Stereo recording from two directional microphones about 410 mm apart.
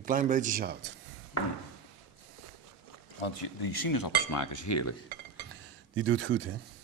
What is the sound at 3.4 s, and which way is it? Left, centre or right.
Cutlery, left.